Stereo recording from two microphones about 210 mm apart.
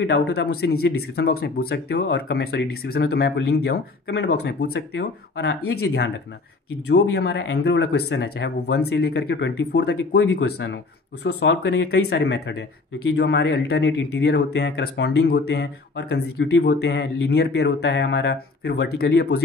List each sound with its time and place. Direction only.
0.0 s speech: 50° left (ahead or behind)